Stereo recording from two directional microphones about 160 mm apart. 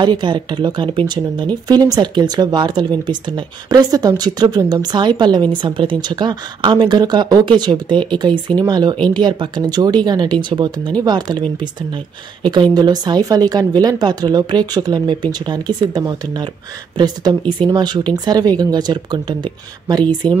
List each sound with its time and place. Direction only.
0.0 s speech: 30° right (ahead or behind)
12.7 s speech: 25° right (ahead or behind)